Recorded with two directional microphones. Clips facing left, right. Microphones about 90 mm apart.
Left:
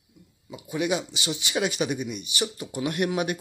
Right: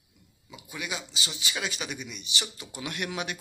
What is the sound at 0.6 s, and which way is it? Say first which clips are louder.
Speech: left 11 dB; 50° left (ahead or behind).